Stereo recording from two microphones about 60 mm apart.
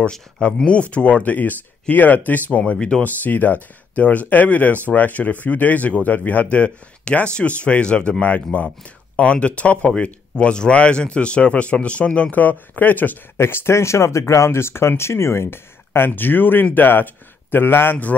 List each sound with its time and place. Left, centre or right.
0.1 s speech: centre
3.0 s speech: left
13.4 s a man's voice: left